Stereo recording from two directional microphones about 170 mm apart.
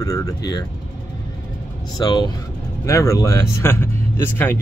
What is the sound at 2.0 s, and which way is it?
Speech, 25° left (ahead or behind).